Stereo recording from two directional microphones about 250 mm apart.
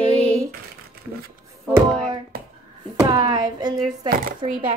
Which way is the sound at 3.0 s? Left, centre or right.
Centre.